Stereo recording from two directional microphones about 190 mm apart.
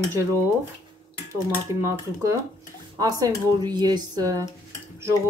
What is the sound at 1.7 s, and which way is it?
Speech, 15° right (ahead or behind).